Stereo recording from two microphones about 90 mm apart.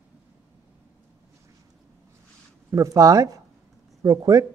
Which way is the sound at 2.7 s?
35° right (ahead or behind).